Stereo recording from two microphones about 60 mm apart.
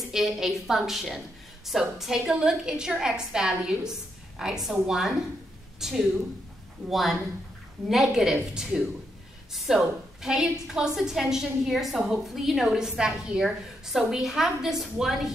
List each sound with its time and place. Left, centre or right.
0.1 s a woman's voice: centre